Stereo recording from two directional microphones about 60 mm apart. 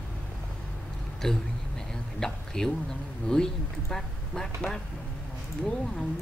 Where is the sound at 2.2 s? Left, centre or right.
Centre.